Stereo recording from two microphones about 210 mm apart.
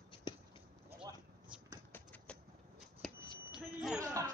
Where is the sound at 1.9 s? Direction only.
5° left (ahead or behind).